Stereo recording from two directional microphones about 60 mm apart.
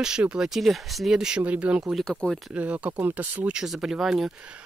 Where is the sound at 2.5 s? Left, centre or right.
Right.